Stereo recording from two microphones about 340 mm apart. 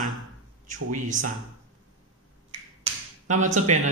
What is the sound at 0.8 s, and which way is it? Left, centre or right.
Speech, right.